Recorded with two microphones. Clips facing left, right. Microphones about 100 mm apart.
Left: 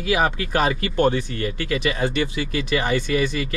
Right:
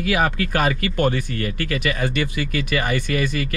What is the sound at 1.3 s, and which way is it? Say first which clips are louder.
Speech: even; 60° right (ahead or behind).